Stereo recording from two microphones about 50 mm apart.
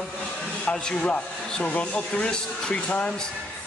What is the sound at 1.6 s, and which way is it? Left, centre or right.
A man's voice, left.